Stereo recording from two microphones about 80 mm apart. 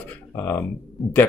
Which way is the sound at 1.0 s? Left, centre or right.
Centre.